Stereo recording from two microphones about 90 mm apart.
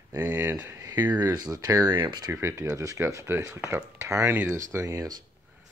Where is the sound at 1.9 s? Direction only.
55° right (ahead or behind).